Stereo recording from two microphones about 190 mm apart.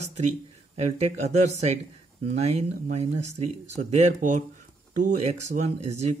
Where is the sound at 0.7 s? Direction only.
35° right (ahead or behind).